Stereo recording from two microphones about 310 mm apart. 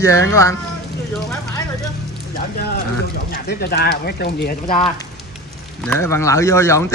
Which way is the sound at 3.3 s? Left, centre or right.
Left.